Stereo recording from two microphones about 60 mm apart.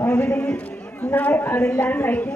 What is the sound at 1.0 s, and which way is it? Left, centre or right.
A man's voice, left.